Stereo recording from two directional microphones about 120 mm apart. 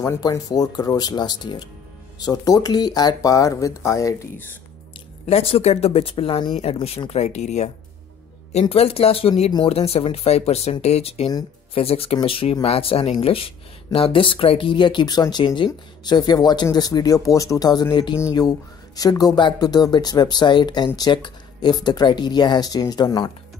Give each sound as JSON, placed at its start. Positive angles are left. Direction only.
{"t": 0.0, "sound": "speech", "side_deg": 25}
{"t": 5.2, "sound": "speech", "side_deg": 55}
{"t": 7.1, "sound": "speech", "side_deg": 65}
{"t": 8.5, "sound": "speech", "side_deg": 55}
{"t": 18.9, "sound": "speech", "side_deg": 30}